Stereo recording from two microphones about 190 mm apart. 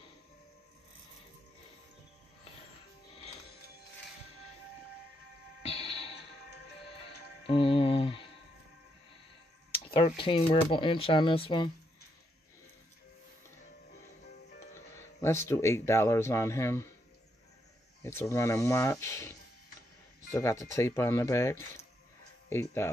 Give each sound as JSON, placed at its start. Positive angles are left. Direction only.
{"t": 5.6, "sound": "music", "side_deg": 30}
{"t": 7.4, "sound": "music", "side_deg": 30}
{"t": 9.8, "sound": "speech", "side_deg": 30}
{"t": 14.7, "sound": "speech", "side_deg": 15}
{"t": 18.0, "sound": "speech", "side_deg": 15}